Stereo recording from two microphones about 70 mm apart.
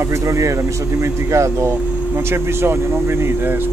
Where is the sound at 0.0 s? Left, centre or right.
Right.